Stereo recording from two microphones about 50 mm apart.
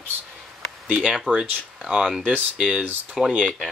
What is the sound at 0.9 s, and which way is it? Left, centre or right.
Speech, right.